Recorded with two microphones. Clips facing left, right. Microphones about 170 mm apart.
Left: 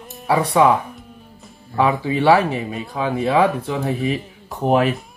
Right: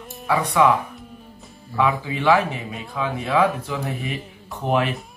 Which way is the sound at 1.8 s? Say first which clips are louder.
Left 4 dB; 35° left (ahead or behind).